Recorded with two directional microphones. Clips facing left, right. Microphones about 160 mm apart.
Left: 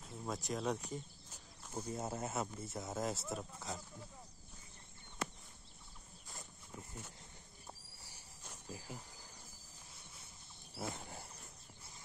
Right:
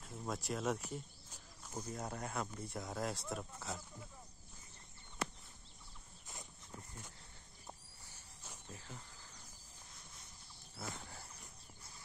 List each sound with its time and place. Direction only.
0.0 s speech: centre (ahead or behind)
1.3 s a sound: 10° left (ahead or behind)
2.0 s speech: 25° left (ahead or behind)
2.2 s speech: 5° left (ahead or behind)
8.1 s cricket: 10° left (ahead or behind)
10.8 s dog: 20° left (ahead or behind)